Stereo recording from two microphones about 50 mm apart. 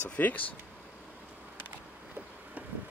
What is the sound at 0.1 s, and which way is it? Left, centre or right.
Speech, left.